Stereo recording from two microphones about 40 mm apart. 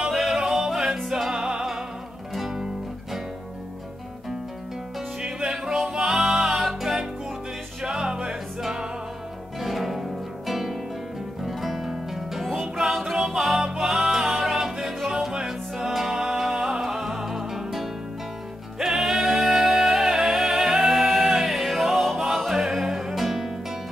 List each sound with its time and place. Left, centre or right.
0.1 s music: centre
2.3 s music: centre
5.5 s music: centre
7.8 s music: centre